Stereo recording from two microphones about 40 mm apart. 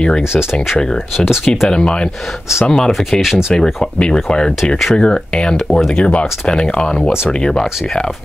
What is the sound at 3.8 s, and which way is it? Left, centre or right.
Speech, left.